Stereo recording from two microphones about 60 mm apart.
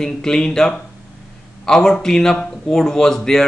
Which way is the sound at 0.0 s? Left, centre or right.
Centre.